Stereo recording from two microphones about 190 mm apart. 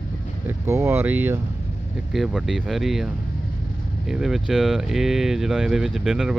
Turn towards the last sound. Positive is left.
turn(degrees=0)  # may be behind; listen again after turning